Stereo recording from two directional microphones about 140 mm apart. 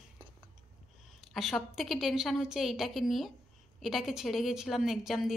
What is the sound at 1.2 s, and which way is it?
A woman's voice, centre (ahead or behind).